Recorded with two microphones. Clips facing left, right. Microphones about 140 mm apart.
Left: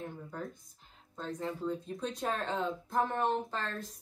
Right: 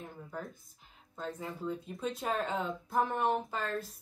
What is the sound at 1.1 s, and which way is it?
Speech, 5° right (ahead or behind).